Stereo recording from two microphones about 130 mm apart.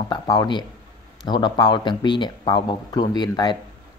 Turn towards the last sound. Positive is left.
turn(degrees=35)  # may be behind; listen again after turning